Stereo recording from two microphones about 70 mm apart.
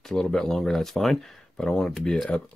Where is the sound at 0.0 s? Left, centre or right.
Centre.